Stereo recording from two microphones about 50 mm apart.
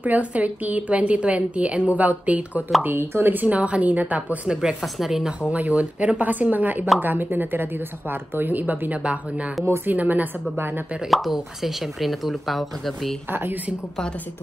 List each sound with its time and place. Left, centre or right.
0.0 s a woman's voice: right
2.8 s speech: right
4.5 s speech: centre
4.8 s speech: centre
5.5 s a woman's voice: right
11.1 s speech: centre
13.3 s speech: right